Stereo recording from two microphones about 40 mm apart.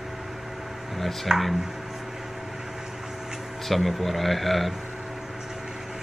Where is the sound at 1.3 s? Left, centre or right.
Centre.